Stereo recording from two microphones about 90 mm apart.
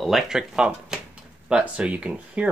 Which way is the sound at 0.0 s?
5° right (ahead or behind).